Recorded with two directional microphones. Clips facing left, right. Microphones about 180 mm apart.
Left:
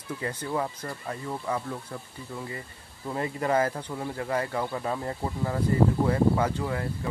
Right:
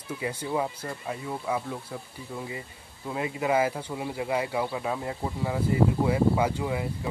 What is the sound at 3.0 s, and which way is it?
Speech, 5° right (ahead or behind).